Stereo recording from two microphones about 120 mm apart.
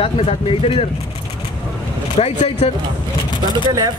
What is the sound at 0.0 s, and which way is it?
Speech, 55° left (ahead or behind).